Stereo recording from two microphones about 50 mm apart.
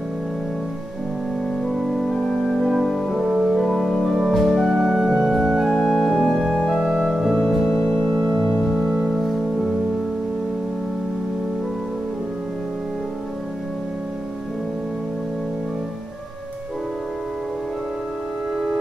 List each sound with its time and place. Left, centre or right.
1.7 s music: centre
7.3 s music: centre